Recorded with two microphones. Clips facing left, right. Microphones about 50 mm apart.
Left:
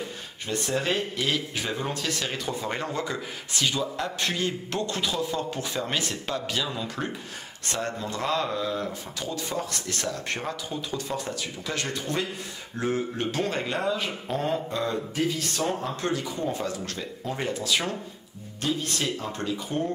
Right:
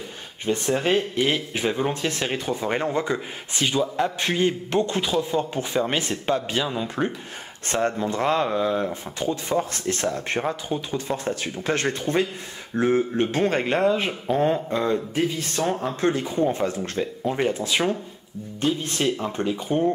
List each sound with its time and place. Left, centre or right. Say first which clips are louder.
0.5 s speech: right 5 dB; right